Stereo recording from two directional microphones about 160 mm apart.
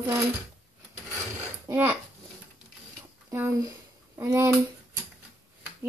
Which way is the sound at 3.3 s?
15° right (ahead or behind).